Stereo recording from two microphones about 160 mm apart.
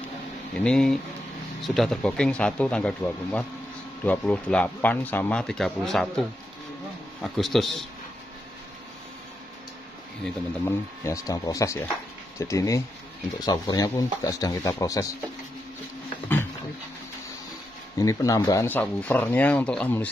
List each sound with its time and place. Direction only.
0.7 s speech: 5° left (ahead or behind)
10.2 s speech: 15° left (ahead or behind)
17.9 s speech: 20° left (ahead or behind)